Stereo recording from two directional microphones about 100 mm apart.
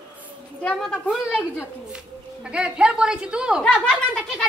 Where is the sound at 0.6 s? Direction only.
10° left (ahead or behind).